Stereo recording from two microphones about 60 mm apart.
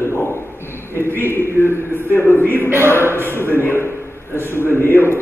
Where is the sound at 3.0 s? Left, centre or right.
Right.